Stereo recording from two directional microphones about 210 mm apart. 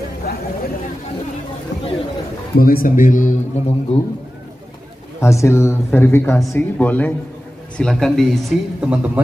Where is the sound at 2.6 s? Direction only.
45° left (ahead or behind).